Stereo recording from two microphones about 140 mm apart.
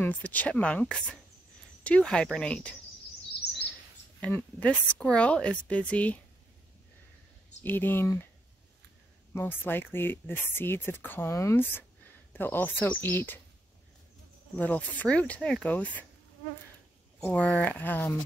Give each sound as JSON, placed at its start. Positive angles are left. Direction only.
{"t": 0.0, "sound": "a woman's voice", "side_deg": 10}
{"t": 4.2, "sound": "a woman's voice", "side_deg": 10}
{"t": 7.6, "sound": "a woman's voice", "side_deg": 15}
{"t": 9.3, "sound": "a woman's voice", "side_deg": 15}
{"t": 14.6, "sound": "a woman's voice", "side_deg": 10}
{"t": 17.3, "sound": "a woman's voice", "side_deg": 10}